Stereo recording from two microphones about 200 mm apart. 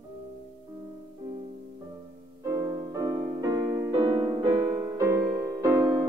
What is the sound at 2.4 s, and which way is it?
Music, 15° right (ahead or behind).